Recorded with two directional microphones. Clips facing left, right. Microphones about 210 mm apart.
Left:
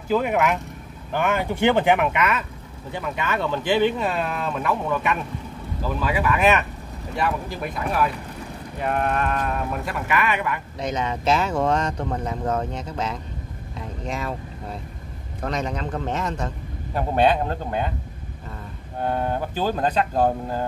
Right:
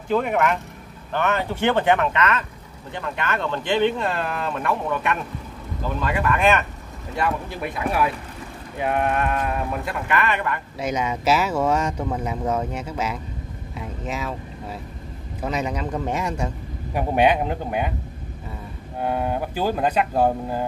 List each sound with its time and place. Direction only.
0.1 s speech: 5° left (ahead or behind)
10.8 s a man's voice: 10° right (ahead or behind)
18.9 s a man's voice: 5° right (ahead or behind)